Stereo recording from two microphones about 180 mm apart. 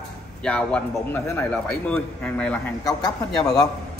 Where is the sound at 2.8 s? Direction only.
20° left (ahead or behind).